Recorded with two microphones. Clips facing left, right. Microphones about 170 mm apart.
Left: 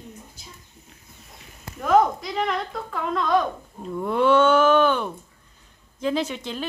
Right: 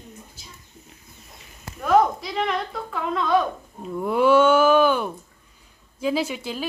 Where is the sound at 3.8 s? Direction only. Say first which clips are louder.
Right 1 dB; 5° right (ahead or behind).